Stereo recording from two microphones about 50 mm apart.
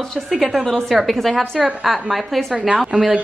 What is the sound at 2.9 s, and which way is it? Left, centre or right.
Speech, centre.